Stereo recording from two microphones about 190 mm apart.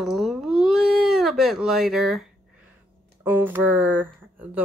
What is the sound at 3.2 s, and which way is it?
Speech, 10° right (ahead or behind).